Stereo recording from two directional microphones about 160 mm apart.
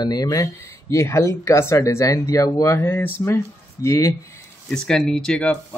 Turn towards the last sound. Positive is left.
turn(degrees=5)  # may be behind; listen again after turning